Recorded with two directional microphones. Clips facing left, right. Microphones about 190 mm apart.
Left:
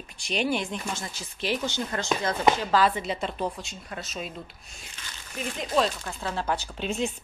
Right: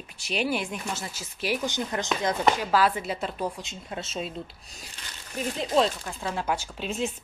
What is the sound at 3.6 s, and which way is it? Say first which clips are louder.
Speech: right 2 dB; 25° right (ahead or behind).